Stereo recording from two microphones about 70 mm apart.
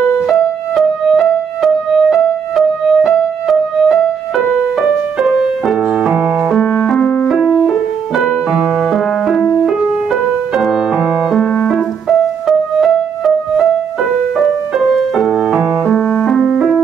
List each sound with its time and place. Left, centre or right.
0.3 s music: centre
5.2 s music: centre
6.6 s music: centre
8.2 s music: centre
10.6 s music: centre
11.3 s music: centre
15.1 s music: centre
15.9 s music: centre
16.3 s piano: centre